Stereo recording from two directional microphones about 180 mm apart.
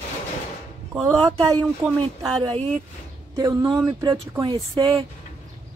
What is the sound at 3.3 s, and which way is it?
Speech, 20° right (ahead or behind).